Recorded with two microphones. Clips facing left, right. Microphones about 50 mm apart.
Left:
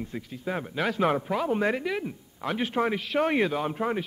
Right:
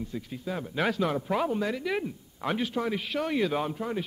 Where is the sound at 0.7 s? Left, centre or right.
Centre.